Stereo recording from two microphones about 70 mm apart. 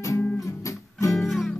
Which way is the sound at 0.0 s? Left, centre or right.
Left.